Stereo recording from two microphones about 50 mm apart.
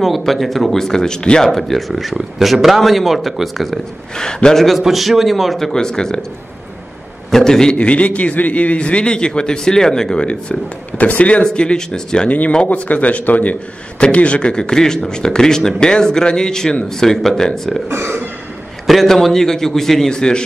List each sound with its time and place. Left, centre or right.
0.0 s a man's voice: centre
1.4 s a man's voice: centre
4.2 s speech: centre
4.7 s a man's voice: centre
5.7 s speech: centre
7.2 s a man's voice: centre
7.7 s a man's voice: left
11.0 s a man's voice: left
12.3 s a man's voice: left; by 17.8 s centre
17.8 s speech: right
18.9 s speech: centre